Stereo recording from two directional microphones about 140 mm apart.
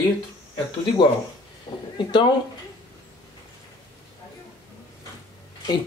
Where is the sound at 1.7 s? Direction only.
30° left (ahead or behind).